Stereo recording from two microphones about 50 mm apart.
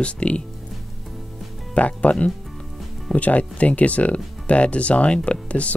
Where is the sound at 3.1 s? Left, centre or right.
Left.